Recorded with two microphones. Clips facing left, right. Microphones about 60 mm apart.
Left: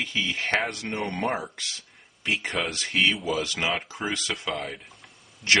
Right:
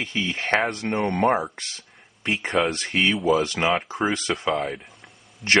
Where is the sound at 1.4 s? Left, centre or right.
Right.